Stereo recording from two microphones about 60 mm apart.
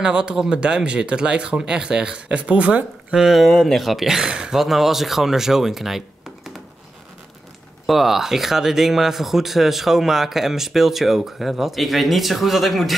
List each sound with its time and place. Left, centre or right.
0.0 s speech: centre
3.2 s speech: centre
7.8 s speech: centre